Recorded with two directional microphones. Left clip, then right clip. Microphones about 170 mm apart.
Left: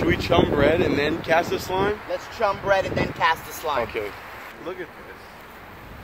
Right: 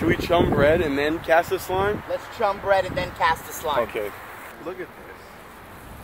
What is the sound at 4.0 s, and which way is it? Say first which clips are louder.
Speech: even; 70° right (ahead or behind).